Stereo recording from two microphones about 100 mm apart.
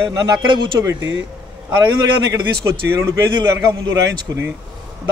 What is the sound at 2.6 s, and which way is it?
Speech, 30° right (ahead or behind).